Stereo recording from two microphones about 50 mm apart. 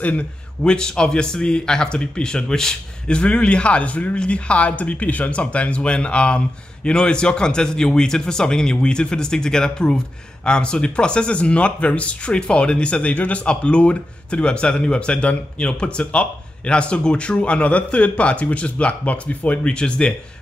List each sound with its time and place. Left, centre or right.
0.0 s speech: left
0.7 s speech: centre